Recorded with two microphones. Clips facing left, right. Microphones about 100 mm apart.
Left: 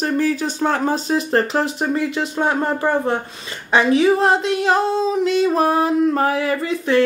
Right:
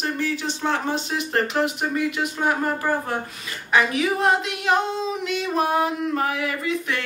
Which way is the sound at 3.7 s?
30° left (ahead or behind).